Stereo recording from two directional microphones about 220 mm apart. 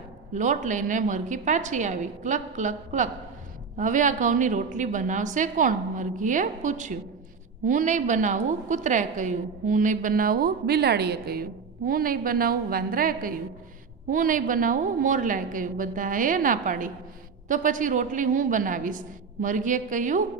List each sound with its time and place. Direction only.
0.3 s a woman's voice: 35° right (ahead or behind)